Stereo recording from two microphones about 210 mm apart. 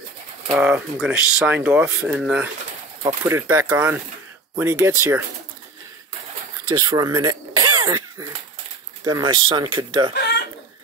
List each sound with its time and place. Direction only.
0.5 s speech: 5° right (ahead or behind)
6.8 s speech: 20° right (ahead or behind)
10.1 s chicken: 50° left (ahead or behind)